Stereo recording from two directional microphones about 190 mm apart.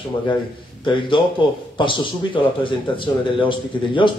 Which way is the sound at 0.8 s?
25° left (ahead or behind).